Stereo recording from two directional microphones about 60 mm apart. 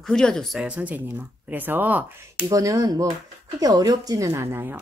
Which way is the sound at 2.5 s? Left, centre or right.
Right.